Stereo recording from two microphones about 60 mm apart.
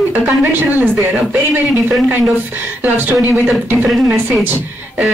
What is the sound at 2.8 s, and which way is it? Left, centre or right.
Speech, right.